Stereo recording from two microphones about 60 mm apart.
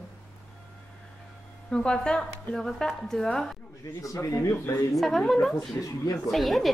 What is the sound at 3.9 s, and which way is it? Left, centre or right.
Speech, left.